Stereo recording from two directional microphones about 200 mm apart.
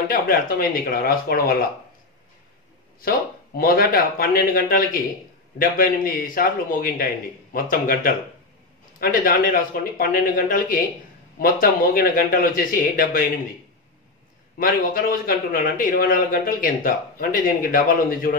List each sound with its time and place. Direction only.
0.1 s speech: 45° left (ahead or behind)
3.1 s speech: 50° left (ahead or behind)
14.6 s speech: 45° left (ahead or behind)